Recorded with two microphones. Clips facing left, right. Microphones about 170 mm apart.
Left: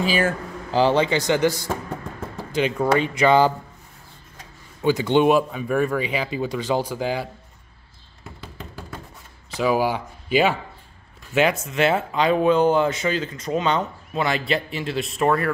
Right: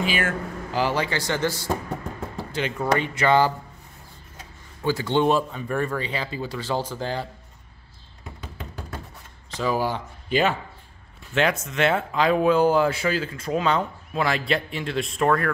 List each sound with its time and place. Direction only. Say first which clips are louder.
0.0 s speech: left 4 dB; 35° left (ahead or behind); by 3.5 s 15° left (ahead or behind)
4.8 s speech: left 4 dB; 20° left (ahead or behind)
9.5 s speech: left 4 dB; 10° left (ahead or behind)
11.6 s speech: left 2 dB; 5° left (ahead or behind)